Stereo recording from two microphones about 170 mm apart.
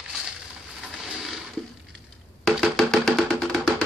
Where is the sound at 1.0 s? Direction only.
5° right (ahead or behind).